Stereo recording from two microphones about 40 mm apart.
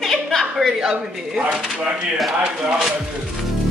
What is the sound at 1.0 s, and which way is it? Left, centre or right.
Speech, centre.